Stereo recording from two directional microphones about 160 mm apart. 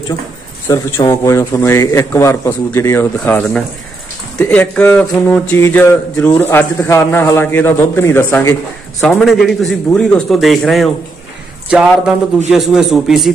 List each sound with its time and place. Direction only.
0.7 s speech: 15° left (ahead or behind)
9.0 s a man's voice: centre (ahead or behind)